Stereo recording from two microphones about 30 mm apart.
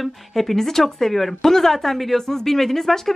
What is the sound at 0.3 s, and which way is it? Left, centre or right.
Speech, centre.